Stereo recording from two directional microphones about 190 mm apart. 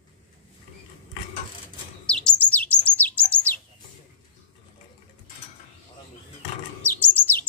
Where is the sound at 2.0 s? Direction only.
5° left (ahead or behind).